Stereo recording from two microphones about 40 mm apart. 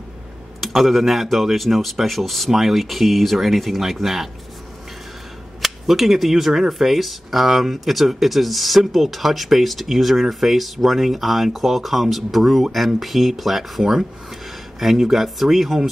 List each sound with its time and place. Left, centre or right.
0.6 s speech: centre
5.6 s speech: centre